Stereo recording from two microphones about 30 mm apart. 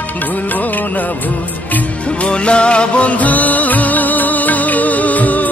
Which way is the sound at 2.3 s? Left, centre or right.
Left.